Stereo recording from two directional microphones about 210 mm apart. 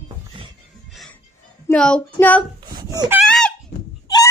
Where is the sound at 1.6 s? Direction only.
5° left (ahead or behind).